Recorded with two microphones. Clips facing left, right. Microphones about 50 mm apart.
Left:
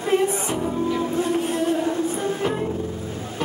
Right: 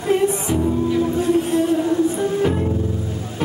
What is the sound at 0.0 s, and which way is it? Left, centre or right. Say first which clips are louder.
Music: right 2 dB; left.